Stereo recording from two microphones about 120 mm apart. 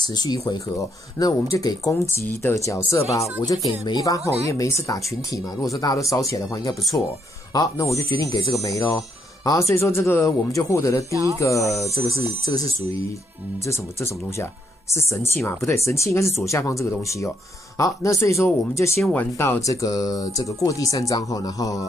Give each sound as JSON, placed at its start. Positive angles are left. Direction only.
{"t": 0.0, "sound": "speech", "side_deg": 35}
{"t": 1.2, "sound": "speech", "side_deg": 25}
{"t": 4.2, "sound": "speech", "side_deg": -60}
{"t": 4.5, "sound": "speech", "side_deg": 25}
{"t": 11.1, "sound": "speech", "side_deg": -25}
{"t": 11.3, "sound": "speech", "side_deg": 25}
{"t": 13.7, "sound": "speech", "side_deg": 25}